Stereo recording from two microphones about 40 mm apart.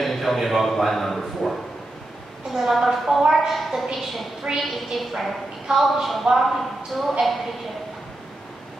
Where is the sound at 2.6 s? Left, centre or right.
Centre.